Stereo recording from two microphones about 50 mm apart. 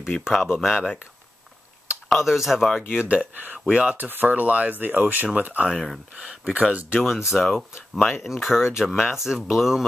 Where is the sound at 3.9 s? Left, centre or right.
Right.